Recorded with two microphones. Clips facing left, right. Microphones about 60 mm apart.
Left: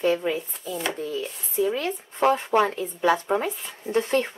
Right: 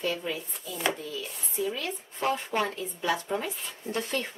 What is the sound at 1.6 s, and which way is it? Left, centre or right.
Speech, left.